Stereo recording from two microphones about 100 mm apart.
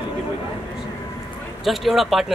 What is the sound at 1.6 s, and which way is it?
Speech, centre (ahead or behind).